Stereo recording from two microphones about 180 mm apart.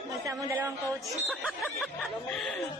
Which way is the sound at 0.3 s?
15° right (ahead or behind).